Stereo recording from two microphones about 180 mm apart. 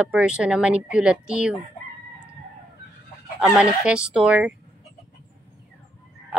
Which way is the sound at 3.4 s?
5° right (ahead or behind).